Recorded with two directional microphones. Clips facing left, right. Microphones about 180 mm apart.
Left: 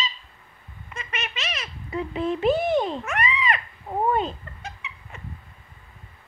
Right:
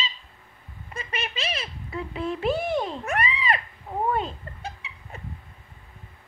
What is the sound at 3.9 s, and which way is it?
Cat, 30° left (ahead or behind).